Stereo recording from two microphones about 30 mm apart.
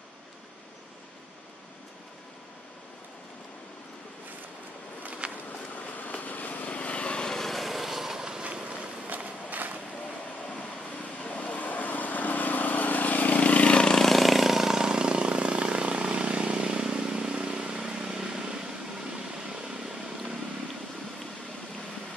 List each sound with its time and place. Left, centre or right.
5.2 s walk: right
5.8 s vehicle: left
7.2 s vehicle: centre
7.5 s vehicle: centre
8.6 s walk: right
11.4 s vehicle: left
14.1 s vehicle: centre; by 17.7 s right
17.7 s vehicle: right